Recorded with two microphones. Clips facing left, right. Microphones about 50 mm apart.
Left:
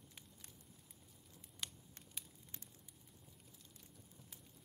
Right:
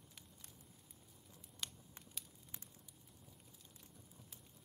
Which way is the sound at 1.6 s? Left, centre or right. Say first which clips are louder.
Even; centre.